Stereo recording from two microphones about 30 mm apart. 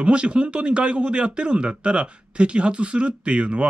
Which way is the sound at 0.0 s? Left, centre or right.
Right.